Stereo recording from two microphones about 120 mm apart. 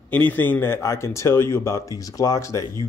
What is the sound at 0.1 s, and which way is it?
Speech, 15° left (ahead or behind).